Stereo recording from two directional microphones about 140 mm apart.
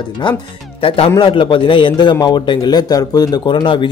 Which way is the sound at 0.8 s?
40° left (ahead or behind).